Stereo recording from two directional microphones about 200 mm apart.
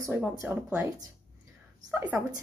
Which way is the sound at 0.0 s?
10° right (ahead or behind).